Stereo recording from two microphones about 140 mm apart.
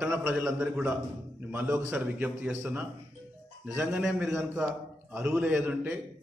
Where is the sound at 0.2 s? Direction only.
15° right (ahead or behind).